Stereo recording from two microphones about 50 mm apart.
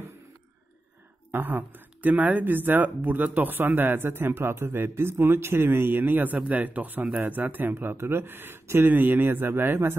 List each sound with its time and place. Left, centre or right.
1.3 s speech: right